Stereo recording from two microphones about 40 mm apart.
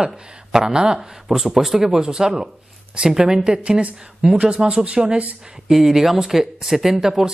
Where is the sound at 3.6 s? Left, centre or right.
Right.